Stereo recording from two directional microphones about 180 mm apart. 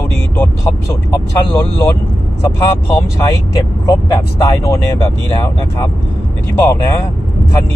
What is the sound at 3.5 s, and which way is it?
Speech, 20° left (ahead or behind).